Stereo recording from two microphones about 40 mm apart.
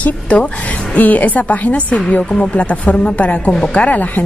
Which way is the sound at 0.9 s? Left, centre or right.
Left.